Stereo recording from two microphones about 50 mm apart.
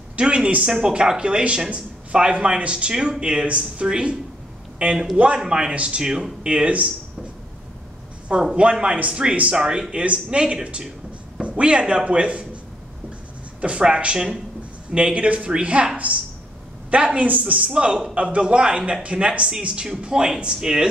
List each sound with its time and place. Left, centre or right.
0.2 s speech: centre
4.8 s speech: right
8.3 s speech: centre
8.8 s speech: right
9.1 s speech: centre
13.6 s speech: right
16.9 s speech: right
17.6 s speech: centre